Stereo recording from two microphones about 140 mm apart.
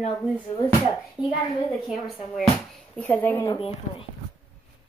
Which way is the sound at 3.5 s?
40° left (ahead or behind).